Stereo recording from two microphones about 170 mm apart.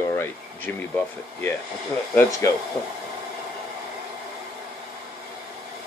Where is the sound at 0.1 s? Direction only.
10° left (ahead or behind).